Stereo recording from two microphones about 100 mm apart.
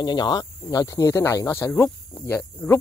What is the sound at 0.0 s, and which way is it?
Speech, 45° left (ahead or behind).